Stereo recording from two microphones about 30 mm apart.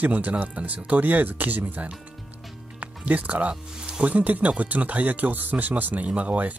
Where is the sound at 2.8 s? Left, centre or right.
Right.